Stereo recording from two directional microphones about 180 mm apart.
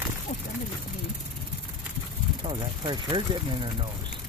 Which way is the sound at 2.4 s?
25° right (ahead or behind).